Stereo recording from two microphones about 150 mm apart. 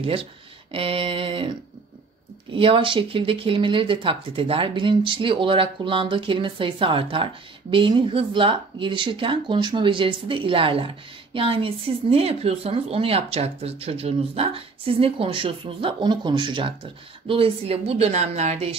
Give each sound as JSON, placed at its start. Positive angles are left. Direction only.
{"t": 0.0, "sound": "speech", "side_deg": -40}
{"t": 2.5, "sound": "speech", "side_deg": -35}